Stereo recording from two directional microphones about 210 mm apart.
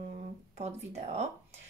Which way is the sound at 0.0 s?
35° right (ahead or behind).